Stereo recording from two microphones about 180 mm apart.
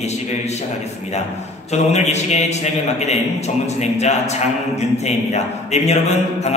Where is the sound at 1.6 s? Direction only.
40° left (ahead or behind).